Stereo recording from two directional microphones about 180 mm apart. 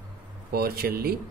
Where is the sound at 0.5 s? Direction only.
60° right (ahead or behind).